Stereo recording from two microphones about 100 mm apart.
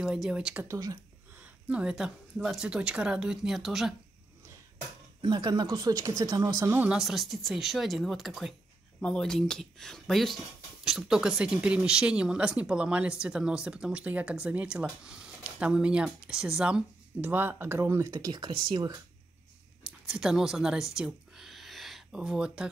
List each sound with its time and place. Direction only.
0.0 s speech: 5° right (ahead or behind)
0.7 s speech: 35° right (ahead or behind)
1.4 s speech: 10° right (ahead or behind)
5.2 s speech: 45° right (ahead or behind); by 6.8 s 30° right (ahead or behind)
6.8 s speech: 5° right (ahead or behind); by 18.1 s 25° right (ahead or behind)
18.1 s speech: 45° right (ahead or behind)
19.8 s a sound: 5° right (ahead or behind)